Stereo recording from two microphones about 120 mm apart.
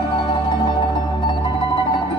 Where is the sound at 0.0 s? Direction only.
45° left (ahead or behind).